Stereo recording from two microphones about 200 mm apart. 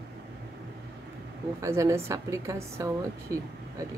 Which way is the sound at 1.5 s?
15° right (ahead or behind).